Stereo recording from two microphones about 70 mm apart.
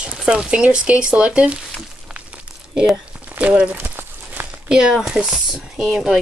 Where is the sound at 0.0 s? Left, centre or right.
Centre.